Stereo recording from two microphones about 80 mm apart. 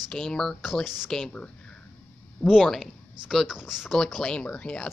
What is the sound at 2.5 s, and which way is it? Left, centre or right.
Speech, centre.